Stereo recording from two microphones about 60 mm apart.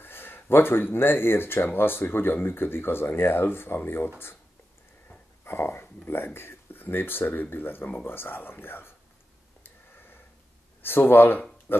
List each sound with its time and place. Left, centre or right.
0.0 s speech: left
5.4 s speech: left
9.6 s a sound: left
10.8 s speech: left